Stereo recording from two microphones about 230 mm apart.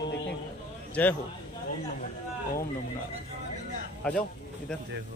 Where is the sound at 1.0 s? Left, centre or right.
Centre.